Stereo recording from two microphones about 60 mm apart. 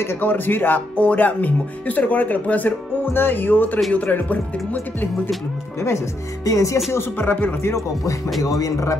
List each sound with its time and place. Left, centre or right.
0.0 s speech: left
6.4 s speech: left
6.9 s speech: left
7.7 s speech: left